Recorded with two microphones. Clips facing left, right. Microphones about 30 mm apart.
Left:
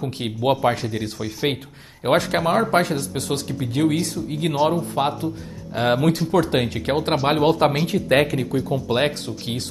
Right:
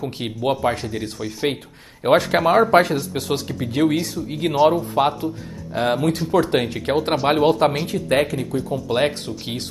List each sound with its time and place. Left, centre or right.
0.0 s speech: centre
2.0 s speech: centre
2.5 s speech: centre
5.8 s speech: centre
6.1 s speech: centre
7.9 s speech: centre